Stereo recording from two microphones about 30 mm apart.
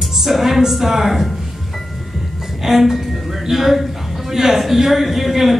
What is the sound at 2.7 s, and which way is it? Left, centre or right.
A woman's voice, centre.